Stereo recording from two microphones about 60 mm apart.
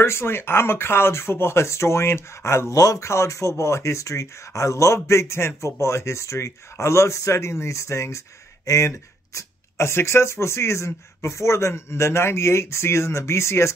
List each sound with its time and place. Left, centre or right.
0.0 s speech: left
2.7 s speech: left
3.0 s speech: left